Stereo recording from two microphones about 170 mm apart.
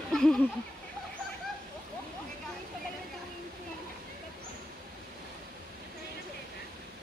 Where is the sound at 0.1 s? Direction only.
5° left (ahead or behind).